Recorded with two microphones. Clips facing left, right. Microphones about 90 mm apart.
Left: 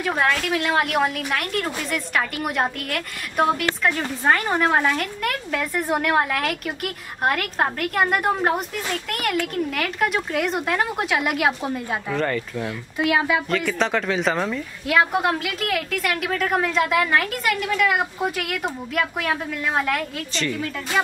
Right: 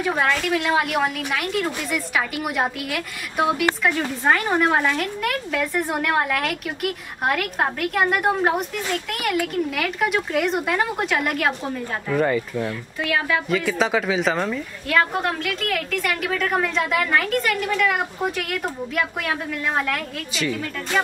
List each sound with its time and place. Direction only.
0.0 s a woman's voice: centre (ahead or behind)
12.1 s speech: 10° right (ahead or behind)
12.6 s speech: 20° left (ahead or behind)
13.5 s a woman's voice: 5° right (ahead or behind)